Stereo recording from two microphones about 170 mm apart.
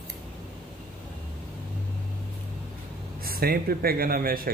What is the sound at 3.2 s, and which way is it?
Speech, 60° right (ahead or behind).